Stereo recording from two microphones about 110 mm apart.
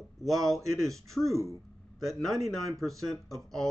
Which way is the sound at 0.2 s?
Centre (ahead or behind).